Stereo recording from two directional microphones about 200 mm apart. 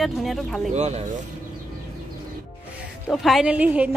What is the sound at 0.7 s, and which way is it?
Speech, 35° right (ahead or behind).